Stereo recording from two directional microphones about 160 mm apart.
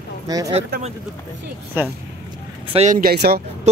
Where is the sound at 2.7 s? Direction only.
40° right (ahead or behind).